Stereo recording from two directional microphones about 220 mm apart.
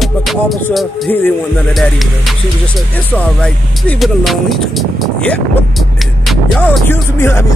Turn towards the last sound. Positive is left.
turn(degrees=10)  # may be behind; listen again after turning